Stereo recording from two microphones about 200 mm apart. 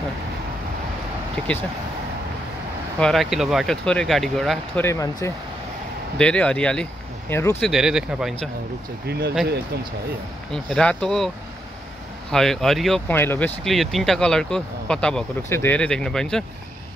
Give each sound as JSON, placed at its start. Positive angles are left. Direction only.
{"t": 3.0, "sound": "speech", "side_deg": 0}
{"t": 4.8, "sound": "speech", "side_deg": 15}
{"t": 7.6, "sound": "speech", "side_deg": 0}
{"t": 9.0, "sound": "speech", "side_deg": -55}
{"t": 10.5, "sound": "speech", "side_deg": 5}
{"t": 12.3, "sound": "speech", "side_deg": 0}
{"t": 13.7, "sound": "speech", "side_deg": 0}